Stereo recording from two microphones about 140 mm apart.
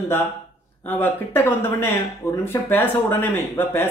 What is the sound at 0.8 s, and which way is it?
Speech, 15° left (ahead or behind).